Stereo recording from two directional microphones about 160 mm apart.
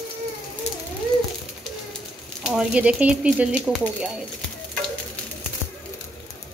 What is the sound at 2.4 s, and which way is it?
A woman's voice, 5° right (ahead or behind).